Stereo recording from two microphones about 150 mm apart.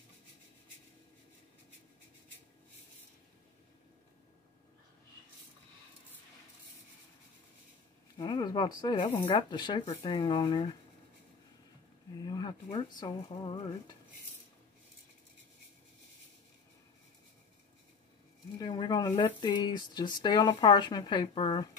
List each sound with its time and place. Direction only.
8.2 s speech: 30° left (ahead or behind)
12.3 s a sound: 30° left (ahead or behind)
13.0 s speech: 30° left (ahead or behind)
18.6 s speech: 30° left (ahead or behind)